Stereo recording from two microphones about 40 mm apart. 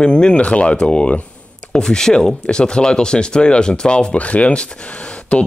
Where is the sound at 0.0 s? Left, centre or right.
Left.